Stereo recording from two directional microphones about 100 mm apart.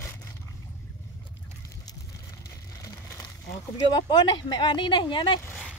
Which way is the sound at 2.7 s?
30° left (ahead or behind).